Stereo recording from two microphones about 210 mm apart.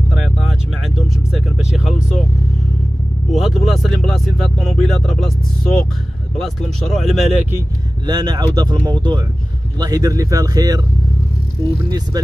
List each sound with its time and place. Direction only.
0.1 s vehicle: centre (ahead or behind)
3.3 s speech: centre (ahead or behind)
8.1 s a man's voice: 20° right (ahead or behind)